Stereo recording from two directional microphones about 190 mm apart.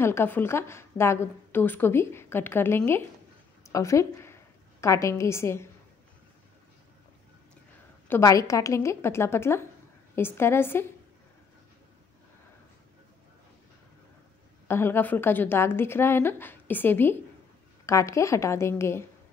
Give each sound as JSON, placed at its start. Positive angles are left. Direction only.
{"t": 0.0, "sound": "a woman's voice", "side_deg": 10}
{"t": 8.1, "sound": "a woman's voice", "side_deg": 15}
{"t": 14.7, "sound": "a woman's voice", "side_deg": 10}